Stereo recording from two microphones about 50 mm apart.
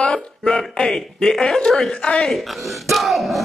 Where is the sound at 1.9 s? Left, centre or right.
Left.